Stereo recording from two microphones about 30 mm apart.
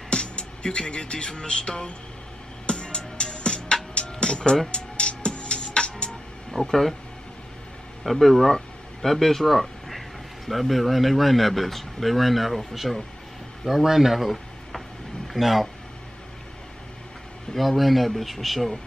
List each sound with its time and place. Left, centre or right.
0.1 s music: left
4.2 s speech: left
4.6 s music: left
6.5 s speech: centre
8.0 s speech: centre
17.6 s speech: centre